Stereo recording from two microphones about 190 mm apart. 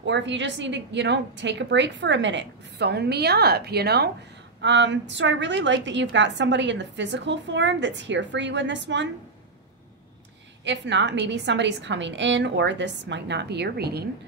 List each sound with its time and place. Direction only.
0.0 s a woman's voice: 70° right (ahead or behind)
4.6 s a woman's voice: 75° right (ahead or behind)
10.6 s a woman's voice: 70° right (ahead or behind)